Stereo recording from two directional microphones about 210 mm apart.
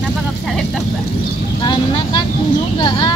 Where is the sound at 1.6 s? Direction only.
25° left (ahead or behind).